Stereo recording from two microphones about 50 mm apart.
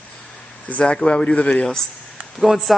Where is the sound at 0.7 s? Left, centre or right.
Left.